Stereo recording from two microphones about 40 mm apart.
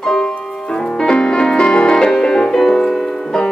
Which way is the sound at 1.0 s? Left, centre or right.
Left.